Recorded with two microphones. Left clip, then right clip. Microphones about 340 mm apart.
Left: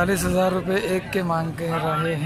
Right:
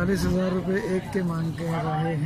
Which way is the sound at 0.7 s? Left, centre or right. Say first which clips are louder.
Left 4 dB; left.